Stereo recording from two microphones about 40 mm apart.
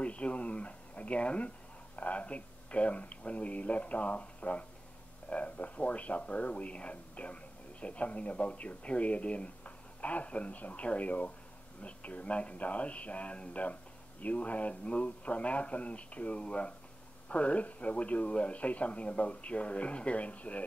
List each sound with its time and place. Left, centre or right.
0.0 s a man's voice: left